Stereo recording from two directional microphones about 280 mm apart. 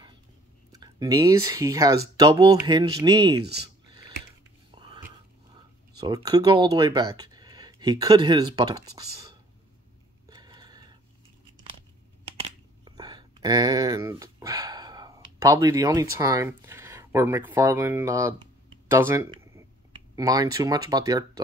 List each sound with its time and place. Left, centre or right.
0.7 s speech: centre
4.6 s whispering: centre
5.5 s speech: centre
10.2 s a sound: centre
12.4 s a sound: centre
18.9 s speech: centre